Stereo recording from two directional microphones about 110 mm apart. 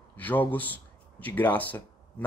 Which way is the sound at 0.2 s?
15° left (ahead or behind).